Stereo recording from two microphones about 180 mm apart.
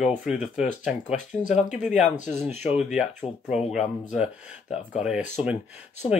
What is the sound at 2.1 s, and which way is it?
Speech, 40° left (ahead or behind).